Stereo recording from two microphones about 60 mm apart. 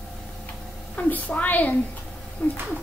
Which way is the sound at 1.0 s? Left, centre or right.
Left.